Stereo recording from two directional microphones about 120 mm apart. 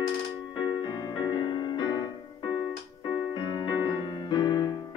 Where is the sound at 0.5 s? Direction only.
40° left (ahead or behind).